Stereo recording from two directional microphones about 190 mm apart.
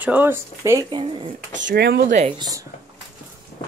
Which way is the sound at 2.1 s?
35° right (ahead or behind).